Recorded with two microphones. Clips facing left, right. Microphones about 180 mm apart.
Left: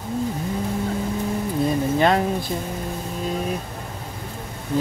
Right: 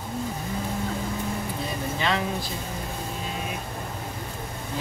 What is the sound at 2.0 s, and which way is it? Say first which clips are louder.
Speech: left 7 dB; 50° left (ahead or behind).